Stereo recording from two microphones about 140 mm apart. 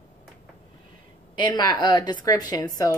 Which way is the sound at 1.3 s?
30° left (ahead or behind).